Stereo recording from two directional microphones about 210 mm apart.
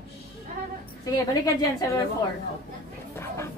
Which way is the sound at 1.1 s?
20° left (ahead or behind).